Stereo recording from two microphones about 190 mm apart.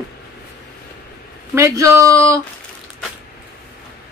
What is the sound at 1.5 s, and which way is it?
Speech, 15° right (ahead or behind).